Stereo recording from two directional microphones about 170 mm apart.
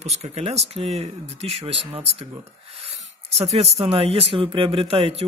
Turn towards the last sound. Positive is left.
turn(degrees=-35)  # may be behind; listen again after turning